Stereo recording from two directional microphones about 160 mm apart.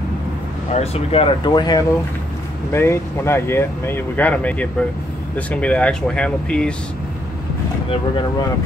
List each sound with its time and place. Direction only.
0.7 s speech: 40° left (ahead or behind)
2.7 s speech: 15° left (ahead or behind)